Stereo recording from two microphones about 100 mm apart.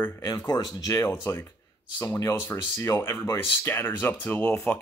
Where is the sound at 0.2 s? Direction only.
40° left (ahead or behind).